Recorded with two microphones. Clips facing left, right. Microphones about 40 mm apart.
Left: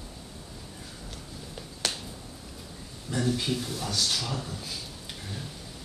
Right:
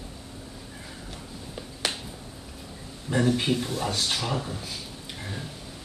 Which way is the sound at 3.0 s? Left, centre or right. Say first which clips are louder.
Right 5 dB; right.